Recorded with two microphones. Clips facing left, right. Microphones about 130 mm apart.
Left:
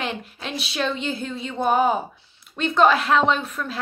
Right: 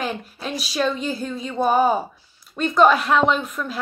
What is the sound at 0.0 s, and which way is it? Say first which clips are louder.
Speech: right 2 dB; 40° right (ahead or behind).